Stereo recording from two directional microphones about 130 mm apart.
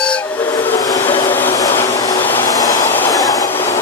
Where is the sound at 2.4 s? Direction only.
25° left (ahead or behind).